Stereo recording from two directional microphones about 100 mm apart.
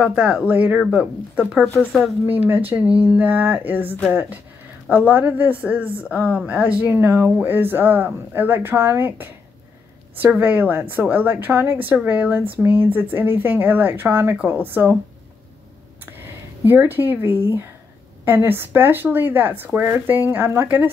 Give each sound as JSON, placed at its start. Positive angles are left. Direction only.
{"t": 0.0, "sound": "a woman's voice", "side_deg": -10}
{"t": 1.9, "sound": "speech", "side_deg": 0}
{"t": 2.2, "sound": "a woman's voice", "side_deg": -15}
{"t": 16.1, "sound": "speech", "side_deg": -20}